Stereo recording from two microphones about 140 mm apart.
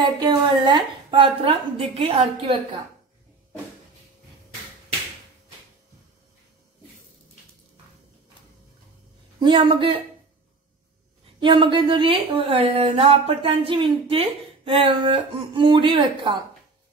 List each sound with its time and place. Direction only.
0.2 s a woman's voice: 35° right (ahead or behind)
9.4 s a woman's voice: 35° right (ahead or behind)
11.3 s a woman's voice: 35° right (ahead or behind)